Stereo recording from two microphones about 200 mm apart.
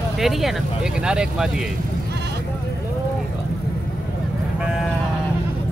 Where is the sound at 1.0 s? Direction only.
5° right (ahead or behind).